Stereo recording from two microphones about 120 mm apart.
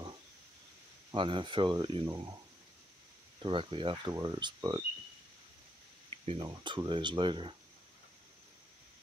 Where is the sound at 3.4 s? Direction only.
45° right (ahead or behind).